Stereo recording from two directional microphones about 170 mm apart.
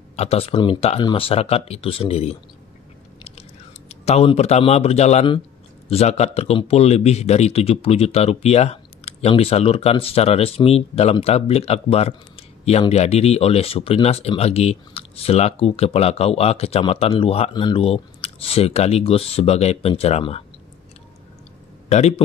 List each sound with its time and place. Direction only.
0.1 s a man's voice: 35° left (ahead or behind)
3.9 s a man's voice: 35° left (ahead or behind)
21.8 s a man's voice: 40° left (ahead or behind)